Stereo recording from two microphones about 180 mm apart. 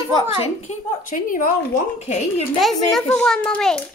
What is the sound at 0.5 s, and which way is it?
Speech, 45° left (ahead or behind).